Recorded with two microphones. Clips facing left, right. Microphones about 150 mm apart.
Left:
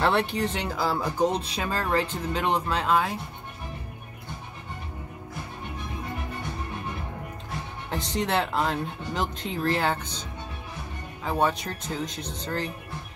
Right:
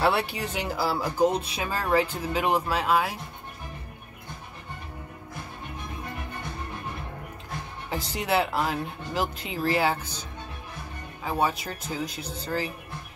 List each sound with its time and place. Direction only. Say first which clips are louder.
0.0 s speech: left 1 dB; 5° right (ahead or behind)
7.9 s speech: even; 5° right (ahead or behind)
11.2 s speech: left 1 dB; 5° right (ahead or behind)